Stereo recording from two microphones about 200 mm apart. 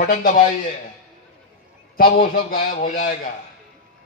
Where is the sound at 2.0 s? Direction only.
45° left (ahead or behind).